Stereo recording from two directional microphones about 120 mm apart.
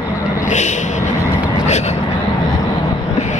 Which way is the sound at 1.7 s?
70° left (ahead or behind).